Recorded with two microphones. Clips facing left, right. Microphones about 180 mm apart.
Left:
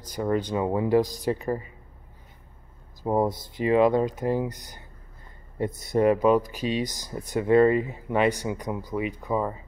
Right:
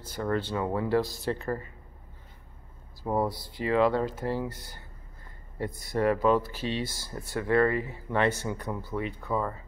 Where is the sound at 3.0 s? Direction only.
20° left (ahead or behind).